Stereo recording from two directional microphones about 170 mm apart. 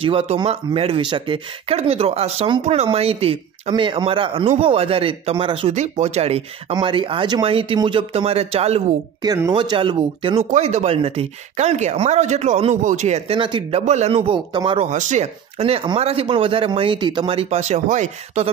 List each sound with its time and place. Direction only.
0.0 s speech: 35° right (ahead or behind)
9.2 s speech: 20° right (ahead or behind)
10.5 s speech: 40° right (ahead or behind)
14.9 s speech: 45° right (ahead or behind)